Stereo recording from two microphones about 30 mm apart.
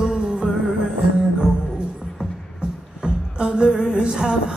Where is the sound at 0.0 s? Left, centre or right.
Right.